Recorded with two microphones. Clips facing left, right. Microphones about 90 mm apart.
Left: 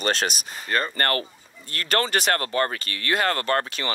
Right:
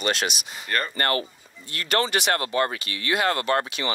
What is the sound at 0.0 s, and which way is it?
Speech, 40° left (ahead or behind).